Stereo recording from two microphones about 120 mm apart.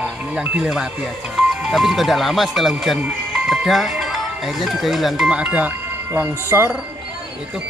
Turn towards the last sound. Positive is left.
turn(degrees=-20)  # may be behind; listen again after turning